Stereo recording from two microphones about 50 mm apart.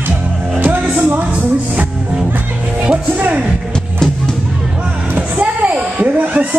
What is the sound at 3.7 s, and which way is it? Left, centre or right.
Music, centre.